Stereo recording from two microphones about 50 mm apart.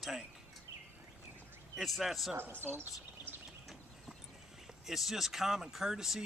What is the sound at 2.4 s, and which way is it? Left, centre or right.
Speech, right.